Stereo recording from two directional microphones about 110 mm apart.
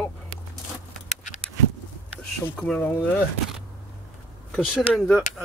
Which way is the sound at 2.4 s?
20° left (ahead or behind).